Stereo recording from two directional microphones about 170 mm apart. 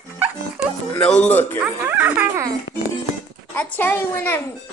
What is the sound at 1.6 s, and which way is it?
Speech, 10° right (ahead or behind).